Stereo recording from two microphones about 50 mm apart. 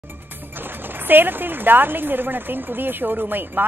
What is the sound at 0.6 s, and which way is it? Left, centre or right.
Speech, right.